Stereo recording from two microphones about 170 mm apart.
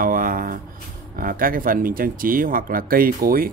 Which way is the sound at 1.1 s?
55° right (ahead or behind).